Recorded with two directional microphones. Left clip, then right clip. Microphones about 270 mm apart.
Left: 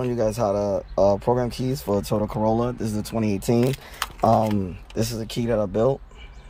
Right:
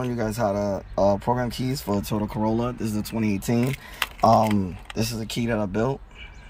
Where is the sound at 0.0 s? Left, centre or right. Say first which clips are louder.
Left 3 dB; centre.